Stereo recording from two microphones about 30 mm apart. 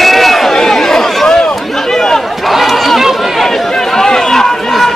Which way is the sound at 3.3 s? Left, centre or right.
Centre.